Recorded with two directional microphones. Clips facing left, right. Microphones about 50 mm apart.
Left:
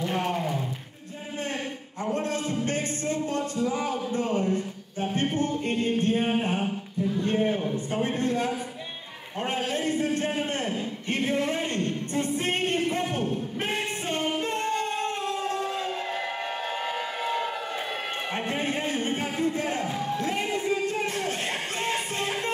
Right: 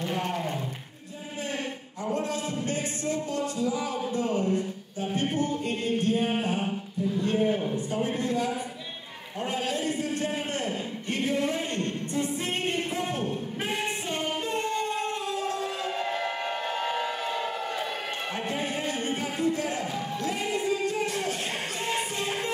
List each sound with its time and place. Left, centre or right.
2.2 s music: left
7.9 s a sound: left
9.4 s a man's voice: left
11.1 s music: left
13.6 s singing: left
21.1 s music: left